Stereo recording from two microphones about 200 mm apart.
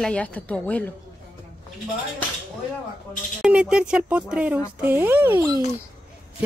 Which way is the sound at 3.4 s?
5° right (ahead or behind).